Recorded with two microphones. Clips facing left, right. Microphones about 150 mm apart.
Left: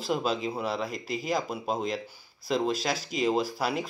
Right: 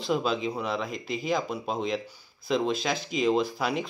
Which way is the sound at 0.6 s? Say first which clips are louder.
Even; 40° left (ahead or behind).